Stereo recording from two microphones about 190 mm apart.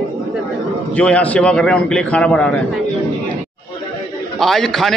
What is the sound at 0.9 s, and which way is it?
A man's voice, 5° left (ahead or behind).